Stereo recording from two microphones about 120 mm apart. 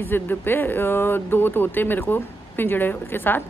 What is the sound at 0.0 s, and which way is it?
A woman's voice, 15° left (ahead or behind).